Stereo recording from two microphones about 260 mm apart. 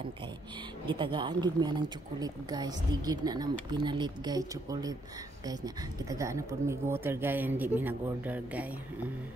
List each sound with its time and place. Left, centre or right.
0.8 s speech: centre
6.0 s speech: centre